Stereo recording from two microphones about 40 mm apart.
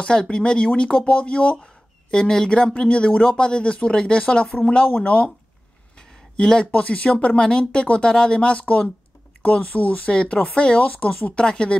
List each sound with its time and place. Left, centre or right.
0.0 s speech: left
1.6 s speech: centre
6.3 s speech: centre
6.6 s speech: left
10.1 s speech: left